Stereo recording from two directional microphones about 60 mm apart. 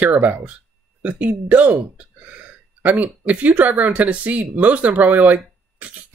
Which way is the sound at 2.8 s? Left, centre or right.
Right.